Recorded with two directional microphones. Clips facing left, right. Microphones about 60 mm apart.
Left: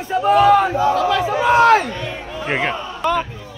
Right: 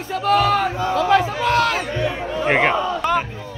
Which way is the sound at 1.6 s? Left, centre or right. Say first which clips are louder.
Left 9 dB; left.